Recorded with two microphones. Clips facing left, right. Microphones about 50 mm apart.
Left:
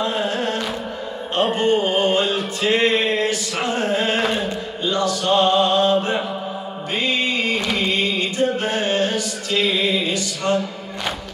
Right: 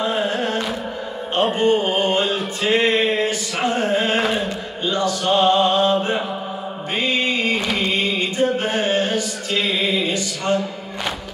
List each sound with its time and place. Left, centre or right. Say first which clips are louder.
0.0 s carnatic music: right 1 dB; centre
1.6 s a sound: even; centre
3.5 s music: right 3 dB; centre
4.8 s mantra: even; centre
5.2 s mantra: right 1 dB; centre
10.5 s speech: even; centre